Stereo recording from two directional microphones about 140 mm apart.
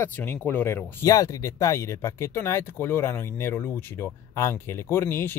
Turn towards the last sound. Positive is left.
turn(degrees=15)  # may be behind; listen again after turning